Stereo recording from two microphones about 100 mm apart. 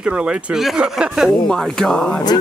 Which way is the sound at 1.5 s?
5° left (ahead or behind).